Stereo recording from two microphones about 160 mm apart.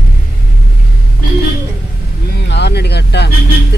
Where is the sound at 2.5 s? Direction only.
90° left.